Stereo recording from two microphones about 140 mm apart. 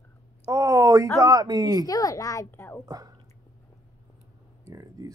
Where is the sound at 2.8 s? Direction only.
25° right (ahead or behind).